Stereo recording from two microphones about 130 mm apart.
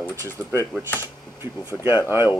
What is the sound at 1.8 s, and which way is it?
Speech, 15° right (ahead or behind).